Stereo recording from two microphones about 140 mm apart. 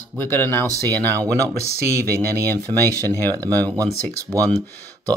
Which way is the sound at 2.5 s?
15° left (ahead or behind).